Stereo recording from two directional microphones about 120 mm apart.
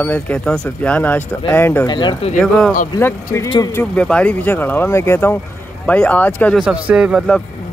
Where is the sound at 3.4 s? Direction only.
35° left (ahead or behind).